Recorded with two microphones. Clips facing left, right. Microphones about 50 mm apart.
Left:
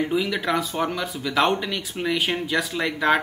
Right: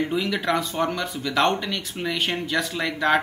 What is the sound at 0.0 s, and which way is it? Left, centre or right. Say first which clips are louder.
Speech: left 1 dB; centre.